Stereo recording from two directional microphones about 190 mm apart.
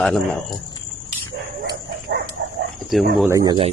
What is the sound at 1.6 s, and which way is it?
Dog, 60° right (ahead or behind).